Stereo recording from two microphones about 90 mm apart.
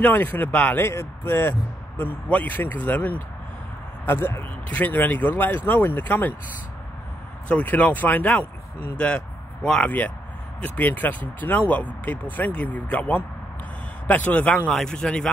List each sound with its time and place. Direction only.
0.0 s speech: 20° left (ahead or behind)
0.8 s speech: 25° left (ahead or behind)
7.4 s speech: 15° left (ahead or behind)
14.7 s a man's voice: 5° left (ahead or behind)